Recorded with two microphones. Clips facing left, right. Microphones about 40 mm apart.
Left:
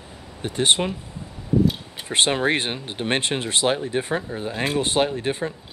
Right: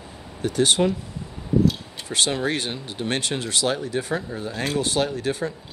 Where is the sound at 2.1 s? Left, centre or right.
Left.